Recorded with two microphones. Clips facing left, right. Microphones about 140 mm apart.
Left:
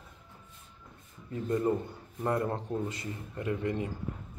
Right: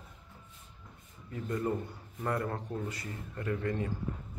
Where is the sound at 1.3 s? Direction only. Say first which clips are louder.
Left 4 dB; 25° left (ahead or behind).